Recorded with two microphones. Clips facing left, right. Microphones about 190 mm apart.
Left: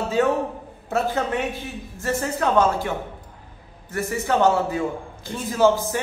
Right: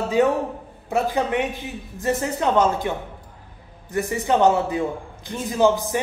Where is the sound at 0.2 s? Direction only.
15° right (ahead or behind).